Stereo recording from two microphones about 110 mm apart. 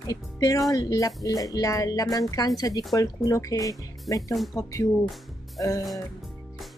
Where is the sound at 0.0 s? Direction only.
35° left (ahead or behind).